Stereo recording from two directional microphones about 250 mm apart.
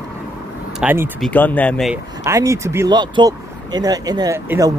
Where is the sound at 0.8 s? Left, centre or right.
Centre.